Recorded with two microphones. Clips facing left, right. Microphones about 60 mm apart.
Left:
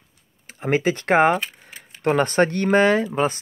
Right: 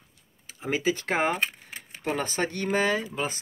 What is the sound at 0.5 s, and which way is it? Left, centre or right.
Speech, left.